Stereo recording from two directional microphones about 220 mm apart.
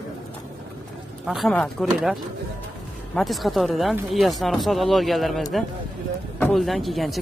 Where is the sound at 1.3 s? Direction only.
Centre (ahead or behind).